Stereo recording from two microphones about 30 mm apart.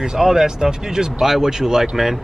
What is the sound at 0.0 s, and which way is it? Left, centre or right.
Speech, centre.